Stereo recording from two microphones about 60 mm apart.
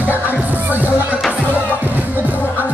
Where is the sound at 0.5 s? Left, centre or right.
Right.